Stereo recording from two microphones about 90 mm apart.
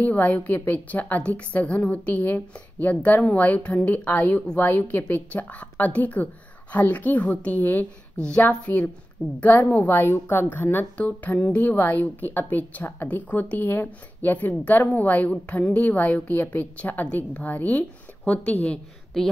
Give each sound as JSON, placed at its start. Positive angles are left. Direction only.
{"t": 0.0, "sound": "a woman's voice", "side_deg": 15}